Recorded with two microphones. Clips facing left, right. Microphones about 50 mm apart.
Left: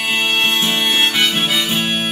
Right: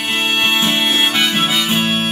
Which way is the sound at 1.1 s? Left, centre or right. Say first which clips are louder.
Right 1 dB; centre.